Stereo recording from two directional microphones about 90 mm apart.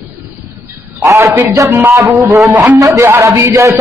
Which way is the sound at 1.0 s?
35° right (ahead or behind).